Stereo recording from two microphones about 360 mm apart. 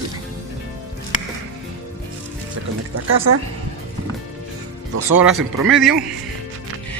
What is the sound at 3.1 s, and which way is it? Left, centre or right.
Speech, right.